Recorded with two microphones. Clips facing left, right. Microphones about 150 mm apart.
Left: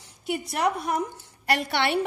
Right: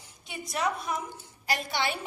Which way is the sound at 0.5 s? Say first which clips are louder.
Left 4 dB; 60° left (ahead or behind).